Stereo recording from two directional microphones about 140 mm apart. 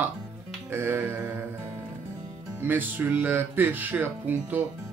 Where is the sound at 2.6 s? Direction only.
15° right (ahead or behind).